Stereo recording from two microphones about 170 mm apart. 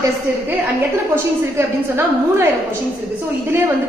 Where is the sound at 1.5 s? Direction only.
15° right (ahead or behind).